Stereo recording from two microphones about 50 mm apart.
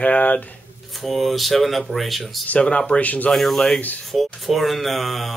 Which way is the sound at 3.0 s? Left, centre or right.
Left.